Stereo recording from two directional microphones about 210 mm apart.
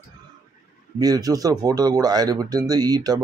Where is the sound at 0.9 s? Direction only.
15° right (ahead or behind).